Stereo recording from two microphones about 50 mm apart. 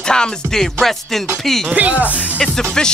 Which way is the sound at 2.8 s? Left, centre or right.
Centre.